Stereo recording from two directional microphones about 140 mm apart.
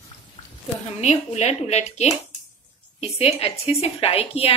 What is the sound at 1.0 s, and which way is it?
A woman's voice, 55° left (ahead or behind).